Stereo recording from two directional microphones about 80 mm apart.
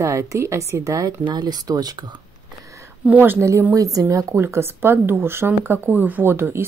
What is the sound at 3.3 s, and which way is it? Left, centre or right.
Speech, right.